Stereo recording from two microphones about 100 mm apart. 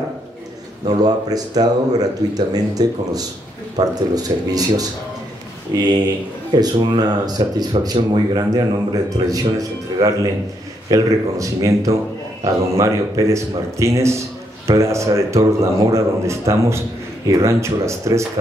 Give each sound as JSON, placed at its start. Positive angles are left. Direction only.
{"t": 0.8, "sound": "a man's voice", "side_deg": -40}